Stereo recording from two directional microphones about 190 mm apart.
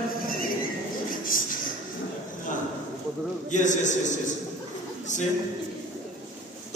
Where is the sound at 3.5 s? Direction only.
40° left (ahead or behind).